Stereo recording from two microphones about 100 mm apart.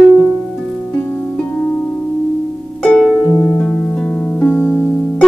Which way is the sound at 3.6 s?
10° left (ahead or behind).